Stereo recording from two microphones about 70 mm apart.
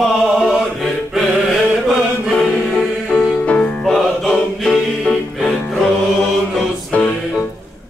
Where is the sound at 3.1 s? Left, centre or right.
Centre.